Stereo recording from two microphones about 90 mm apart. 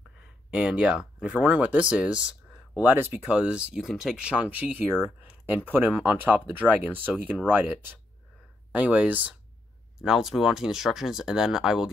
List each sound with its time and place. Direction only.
0.5 s speech: 10° right (ahead or behind)
9.9 s speech: 5° right (ahead or behind)